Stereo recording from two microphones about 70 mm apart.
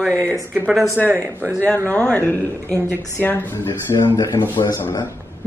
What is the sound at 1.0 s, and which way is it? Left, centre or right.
Speech, right.